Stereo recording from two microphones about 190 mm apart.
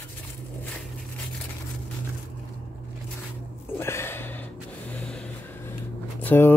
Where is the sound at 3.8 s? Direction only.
15° left (ahead or behind).